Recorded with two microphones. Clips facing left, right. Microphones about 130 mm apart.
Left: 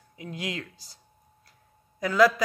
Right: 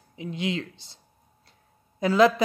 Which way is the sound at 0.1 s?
25° right (ahead or behind).